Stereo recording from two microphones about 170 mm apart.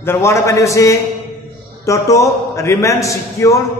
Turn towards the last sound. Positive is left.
turn(degrees=20)  # may be behind; listen again after turning